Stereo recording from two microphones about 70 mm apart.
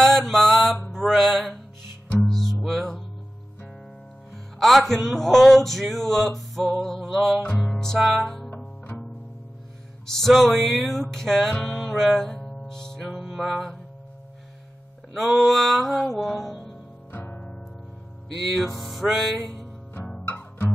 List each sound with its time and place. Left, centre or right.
0.0 s mantra: centre
0.9 s music: centre
4.6 s speech: centre
5.0 s male singing: centre
7.4 s music: left
7.8 s male singing: centre
10.1 s male singing: centre
11.6 s music: centre
15.1 s male singing: centre
16.3 s music: centre
17.1 s music: left
18.8 s male singing: centre
20.2 s music: left